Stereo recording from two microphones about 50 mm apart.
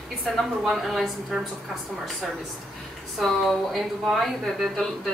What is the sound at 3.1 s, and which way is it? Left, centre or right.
Speech, centre.